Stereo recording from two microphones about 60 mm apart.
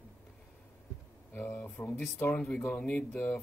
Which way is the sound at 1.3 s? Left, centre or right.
Left.